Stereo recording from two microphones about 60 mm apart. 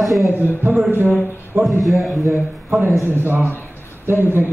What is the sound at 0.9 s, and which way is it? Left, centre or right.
Speech, right.